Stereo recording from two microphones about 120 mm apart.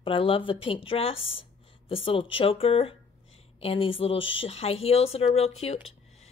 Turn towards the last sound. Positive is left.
turn(degrees=60)  # may be behind; listen again after turning